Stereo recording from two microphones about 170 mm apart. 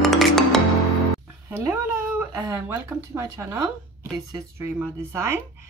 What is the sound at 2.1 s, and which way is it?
Speech, 10° right (ahead or behind).